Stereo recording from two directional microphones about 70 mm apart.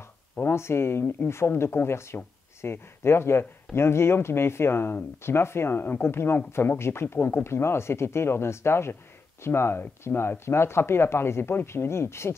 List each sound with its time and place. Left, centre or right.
0.4 s speech: left